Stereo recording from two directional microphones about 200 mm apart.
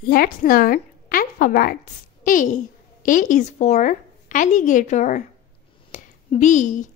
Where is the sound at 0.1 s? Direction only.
45° left (ahead or behind).